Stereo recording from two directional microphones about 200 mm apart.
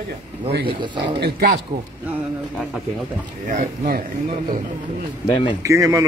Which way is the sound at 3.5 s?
45° right (ahead or behind).